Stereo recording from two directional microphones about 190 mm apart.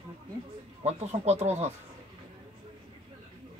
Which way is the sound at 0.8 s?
35° right (ahead or behind).